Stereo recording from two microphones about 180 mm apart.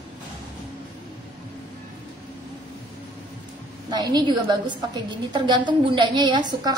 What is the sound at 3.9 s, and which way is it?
A woman's voice, 20° right (ahead or behind).